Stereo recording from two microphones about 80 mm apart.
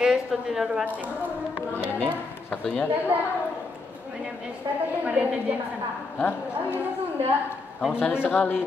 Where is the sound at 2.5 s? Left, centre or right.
Centre.